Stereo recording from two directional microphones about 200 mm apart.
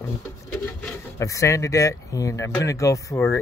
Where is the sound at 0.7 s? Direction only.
10° left (ahead or behind).